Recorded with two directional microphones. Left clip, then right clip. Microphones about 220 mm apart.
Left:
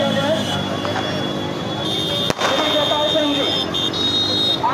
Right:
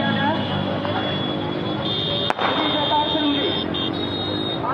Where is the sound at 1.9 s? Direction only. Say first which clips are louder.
Left 2 dB; 45° left (ahead or behind).